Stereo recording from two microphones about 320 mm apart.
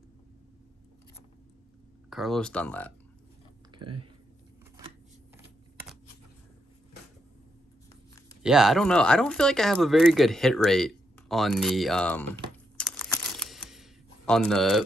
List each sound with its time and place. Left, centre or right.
2.0 s speech: centre
3.7 s speech: centre
8.4 s speech: centre
13.0 s a sound: centre